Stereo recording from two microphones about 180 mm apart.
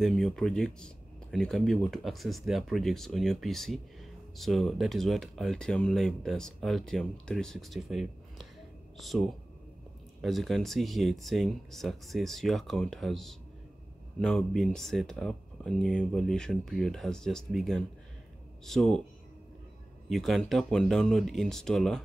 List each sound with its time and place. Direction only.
0.0 s speech: centre (ahead or behind)
20.1 s speech: centre (ahead or behind)